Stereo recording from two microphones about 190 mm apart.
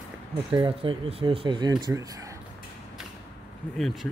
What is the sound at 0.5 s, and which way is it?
Speech, 30° right (ahead or behind).